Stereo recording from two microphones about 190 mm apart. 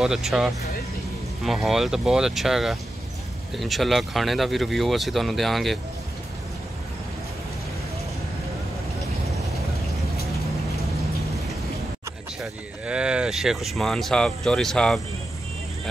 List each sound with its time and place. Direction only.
0.0 s speech: centre (ahead or behind)
12.8 s speech: 5° right (ahead or behind)